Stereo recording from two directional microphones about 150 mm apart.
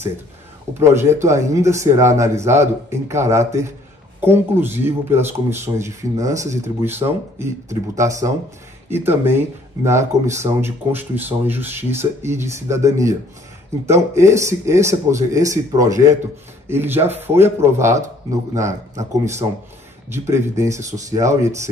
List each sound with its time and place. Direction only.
0.7 s speech: 15° right (ahead or behind)
14.1 s speech: 20° right (ahead or behind)